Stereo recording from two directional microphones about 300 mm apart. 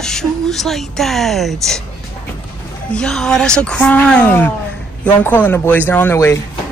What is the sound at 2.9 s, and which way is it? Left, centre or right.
A woman's voice, centre.